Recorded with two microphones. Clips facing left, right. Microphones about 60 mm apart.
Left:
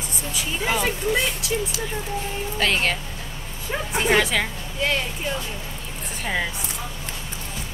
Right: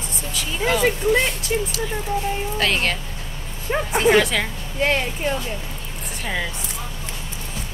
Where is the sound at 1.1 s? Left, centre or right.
Right.